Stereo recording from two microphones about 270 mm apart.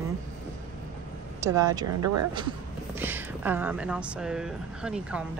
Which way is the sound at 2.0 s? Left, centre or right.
Right.